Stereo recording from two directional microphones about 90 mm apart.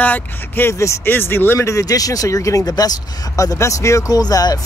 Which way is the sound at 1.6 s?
35° left (ahead or behind).